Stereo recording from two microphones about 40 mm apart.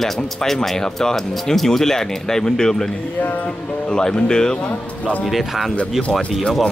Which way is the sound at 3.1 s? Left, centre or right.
Left.